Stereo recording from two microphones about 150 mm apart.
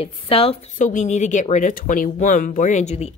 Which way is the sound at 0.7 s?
55° left (ahead or behind).